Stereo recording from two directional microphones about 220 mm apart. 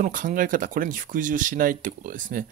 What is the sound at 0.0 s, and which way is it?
Speech, 40° right (ahead or behind).